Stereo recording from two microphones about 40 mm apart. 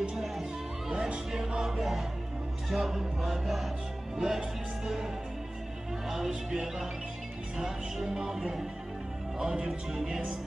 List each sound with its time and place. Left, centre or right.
0.1 s music: centre
0.9 s speech: right
1.3 s music: centre
6.0 s music: centre